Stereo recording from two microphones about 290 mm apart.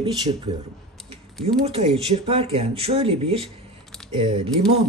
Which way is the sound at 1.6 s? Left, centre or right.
Centre.